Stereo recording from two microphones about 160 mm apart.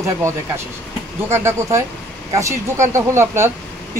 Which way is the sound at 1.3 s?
15° right (ahead or behind).